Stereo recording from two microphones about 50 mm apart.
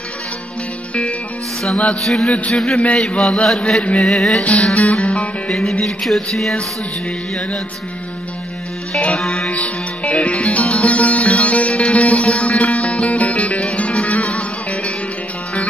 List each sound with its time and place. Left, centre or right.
1.6 s chant: centre
5.5 s music: centre
8.9 s chant: centre
9.6 s music: left